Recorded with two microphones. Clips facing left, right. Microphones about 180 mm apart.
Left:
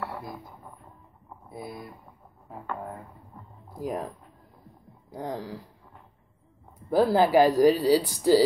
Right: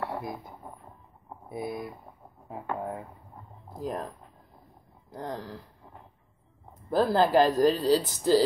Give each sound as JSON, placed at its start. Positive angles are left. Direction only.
{"t": 0.0, "sound": "a sound", "side_deg": -20}
{"t": 1.5, "sound": "speech", "side_deg": -20}
{"t": 3.8, "sound": "speech", "side_deg": 10}
{"t": 5.1, "sound": "speech", "side_deg": 10}
{"t": 6.9, "sound": "speech", "side_deg": 10}